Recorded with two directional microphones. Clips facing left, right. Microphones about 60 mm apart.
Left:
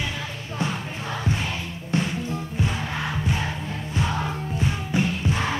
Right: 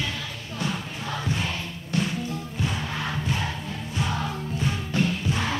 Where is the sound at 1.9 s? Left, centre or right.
Left.